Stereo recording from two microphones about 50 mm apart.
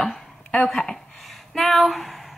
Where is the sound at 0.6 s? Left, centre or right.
Centre.